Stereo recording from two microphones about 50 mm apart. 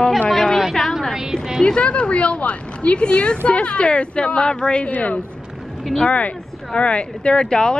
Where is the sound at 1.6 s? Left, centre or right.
Centre.